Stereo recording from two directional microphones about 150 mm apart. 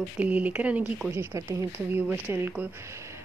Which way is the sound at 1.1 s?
15° right (ahead or behind).